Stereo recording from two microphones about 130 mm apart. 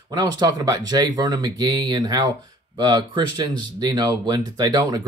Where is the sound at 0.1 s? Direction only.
30° right (ahead or behind).